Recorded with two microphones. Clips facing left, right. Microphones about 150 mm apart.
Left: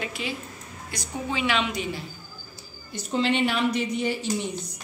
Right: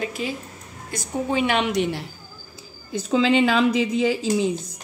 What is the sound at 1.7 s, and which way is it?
Speech, 75° right (ahead or behind).